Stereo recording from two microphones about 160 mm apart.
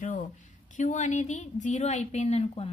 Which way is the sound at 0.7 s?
50° left (ahead or behind).